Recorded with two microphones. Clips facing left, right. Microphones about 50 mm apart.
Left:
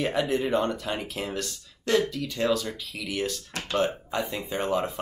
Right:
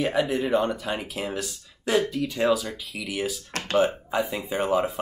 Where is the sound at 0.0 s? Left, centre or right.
Centre.